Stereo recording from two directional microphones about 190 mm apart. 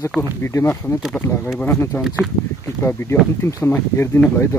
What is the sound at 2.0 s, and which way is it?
Speech, centre (ahead or behind).